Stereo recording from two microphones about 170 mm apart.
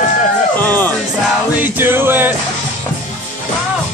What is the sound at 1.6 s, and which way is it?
Music, 10° right (ahead or behind).